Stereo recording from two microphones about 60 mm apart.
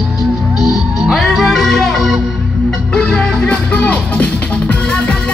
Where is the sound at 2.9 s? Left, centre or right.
Centre.